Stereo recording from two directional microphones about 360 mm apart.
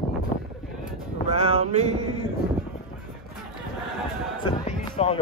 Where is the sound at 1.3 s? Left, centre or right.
Centre.